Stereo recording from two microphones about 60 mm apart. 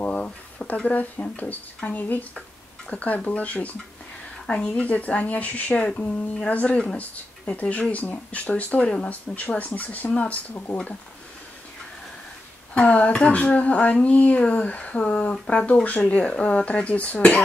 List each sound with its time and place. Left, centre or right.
0.0 s speech: left
7.0 s speech: left
12.7 s speech: left